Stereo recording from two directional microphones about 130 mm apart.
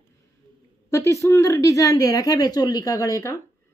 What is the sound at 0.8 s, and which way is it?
A woman's voice, 20° left (ahead or behind).